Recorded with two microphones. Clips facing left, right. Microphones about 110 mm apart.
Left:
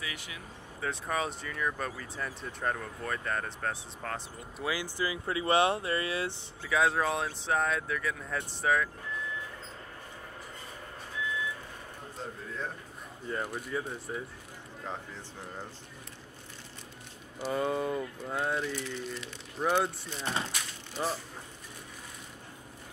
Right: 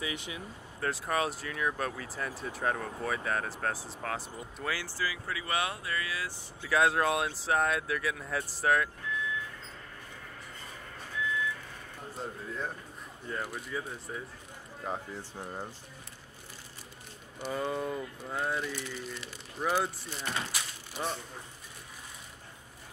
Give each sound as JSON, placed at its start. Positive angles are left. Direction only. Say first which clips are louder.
{"t": 0.0, "sound": "speech", "louder": "right 4 dB", "side_deg": -25}
{"t": 0.7, "sound": "speech", "louder": "right 2 dB", "side_deg": 0}
{"t": 4.6, "sound": "speech", "louder": "left 2 dB", "side_deg": 15}
{"t": 6.7, "sound": "speech", "louder": "right 1 dB", "side_deg": 0}
{"t": 12.2, "sound": "a sound", "louder": "right 1 dB", "side_deg": -5}
{"t": 13.3, "sound": "speech", "louder": "left 2 dB", "side_deg": 0}
{"t": 14.8, "sound": "speech", "louder": "right 3 dB", "side_deg": -10}
{"t": 17.4, "sound": "speech", "louder": "left 3 dB", "side_deg": 0}